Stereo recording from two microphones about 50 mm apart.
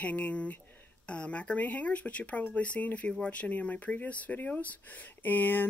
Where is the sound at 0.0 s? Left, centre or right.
Left.